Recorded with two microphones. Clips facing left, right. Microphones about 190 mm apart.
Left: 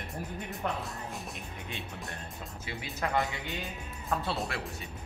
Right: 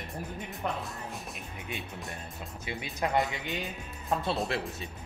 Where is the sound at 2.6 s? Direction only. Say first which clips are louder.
Right 3 dB; 20° right (ahead or behind).